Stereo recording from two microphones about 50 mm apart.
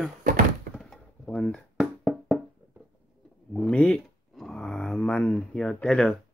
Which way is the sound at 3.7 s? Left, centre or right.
Centre.